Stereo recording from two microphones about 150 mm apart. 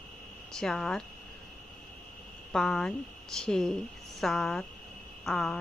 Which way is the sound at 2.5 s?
5° left (ahead or behind).